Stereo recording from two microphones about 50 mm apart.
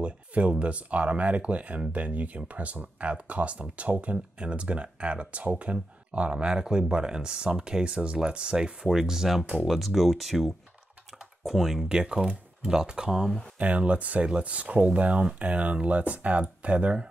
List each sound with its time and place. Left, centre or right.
0.0 s speech: right; by 11.8 s centre
11.9 s speech: centre
13.6 s speech: right